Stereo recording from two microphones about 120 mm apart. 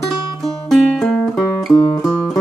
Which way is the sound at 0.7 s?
Centre (ahead or behind).